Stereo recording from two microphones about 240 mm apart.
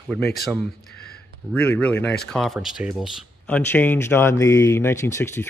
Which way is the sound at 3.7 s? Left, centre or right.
Centre.